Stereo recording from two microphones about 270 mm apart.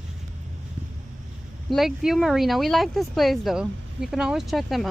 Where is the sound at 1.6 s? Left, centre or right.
Centre.